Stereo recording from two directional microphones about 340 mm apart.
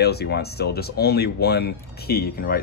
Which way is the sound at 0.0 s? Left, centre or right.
Left.